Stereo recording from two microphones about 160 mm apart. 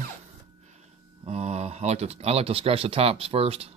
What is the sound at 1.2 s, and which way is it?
Speech, 40° right (ahead or behind).